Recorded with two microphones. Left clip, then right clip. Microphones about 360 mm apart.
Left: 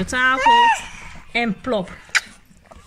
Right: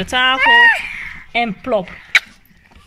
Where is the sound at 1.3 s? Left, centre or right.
Centre.